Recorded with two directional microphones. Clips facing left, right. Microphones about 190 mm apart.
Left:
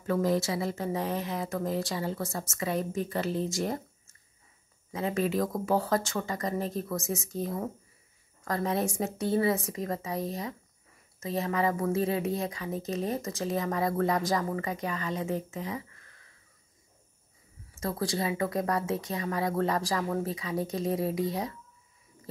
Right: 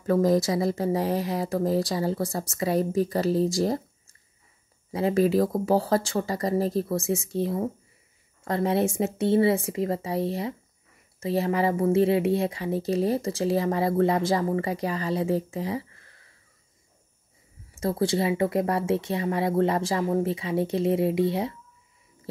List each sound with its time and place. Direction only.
0.0 s speech: 40° right (ahead or behind)
17.7 s speech: 30° right (ahead or behind)